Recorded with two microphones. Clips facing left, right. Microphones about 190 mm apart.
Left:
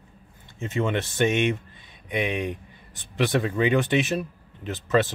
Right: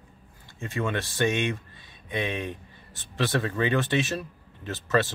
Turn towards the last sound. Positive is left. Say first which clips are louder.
# left 3 dB
turn(degrees=20)  # may be behind; listen again after turning